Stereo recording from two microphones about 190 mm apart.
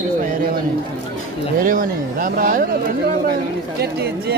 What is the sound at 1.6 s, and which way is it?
Speech, 45° right (ahead or behind).